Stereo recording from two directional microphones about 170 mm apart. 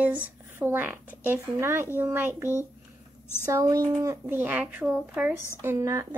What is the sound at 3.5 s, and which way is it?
Speech, 20° right (ahead or behind).